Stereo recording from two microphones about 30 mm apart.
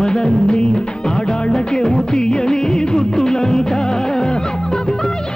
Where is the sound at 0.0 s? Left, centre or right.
Left.